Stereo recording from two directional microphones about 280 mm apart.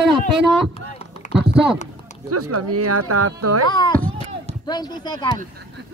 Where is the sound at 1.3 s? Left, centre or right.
Centre.